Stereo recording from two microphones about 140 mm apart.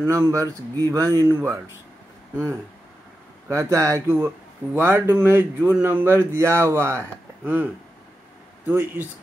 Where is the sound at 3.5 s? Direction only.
20° right (ahead or behind).